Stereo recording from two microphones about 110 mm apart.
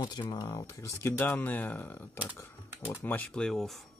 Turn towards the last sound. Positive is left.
turn(degrees=5)  # may be behind; listen again after turning